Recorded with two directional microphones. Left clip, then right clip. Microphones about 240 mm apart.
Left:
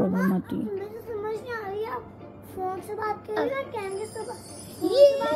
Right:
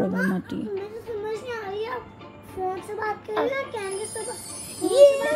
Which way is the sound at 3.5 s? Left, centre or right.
Centre.